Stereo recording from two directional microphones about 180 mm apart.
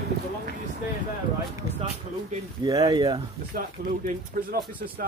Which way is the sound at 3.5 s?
55° right (ahead or behind).